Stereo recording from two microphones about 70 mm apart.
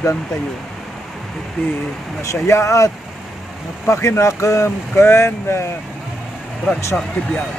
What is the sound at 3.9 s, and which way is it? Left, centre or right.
Speech, left.